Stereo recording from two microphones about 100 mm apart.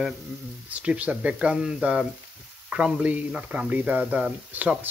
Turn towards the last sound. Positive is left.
turn(degrees=-15)  # may be behind; listen again after turning